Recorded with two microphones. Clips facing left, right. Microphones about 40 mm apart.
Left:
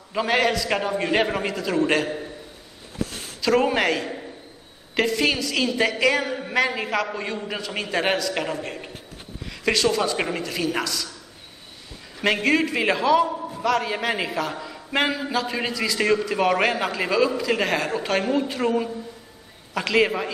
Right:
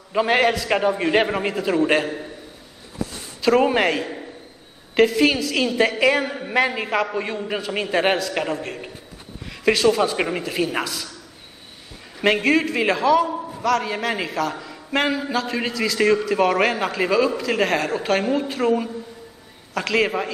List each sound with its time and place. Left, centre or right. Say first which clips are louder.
0.1 s a man's voice: right 3 dB; centre
3.5 s a man's voice: right 2 dB; centre
12.2 s a man's voice: right 2 dB; centre